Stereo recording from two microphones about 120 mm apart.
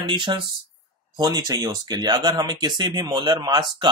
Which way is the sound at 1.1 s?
35° right (ahead or behind).